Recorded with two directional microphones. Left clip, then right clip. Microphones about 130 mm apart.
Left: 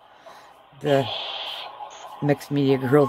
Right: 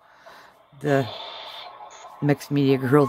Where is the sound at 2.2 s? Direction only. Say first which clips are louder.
Even; 20° right (ahead or behind).